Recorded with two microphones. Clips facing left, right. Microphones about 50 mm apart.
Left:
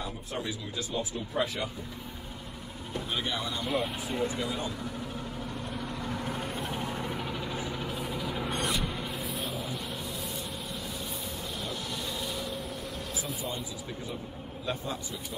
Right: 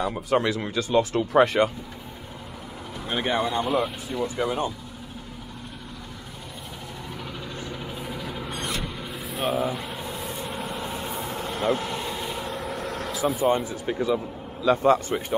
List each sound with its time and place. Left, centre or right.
0.0 s speech: right
3.1 s speech: right
3.6 s speech: centre
4.4 s speech: right
7.8 s vehicle: centre
9.4 s speech: right
10.2 s vehicle: right
10.8 s vehicle: right
11.8 s vehicle: right
12.4 s vehicle: right